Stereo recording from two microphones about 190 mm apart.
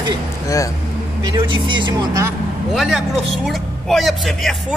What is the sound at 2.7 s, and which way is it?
A man's voice, centre (ahead or behind).